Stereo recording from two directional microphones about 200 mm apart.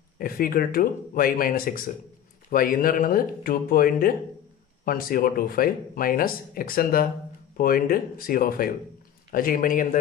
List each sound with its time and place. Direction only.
0.2 s speech: 45° left (ahead or behind)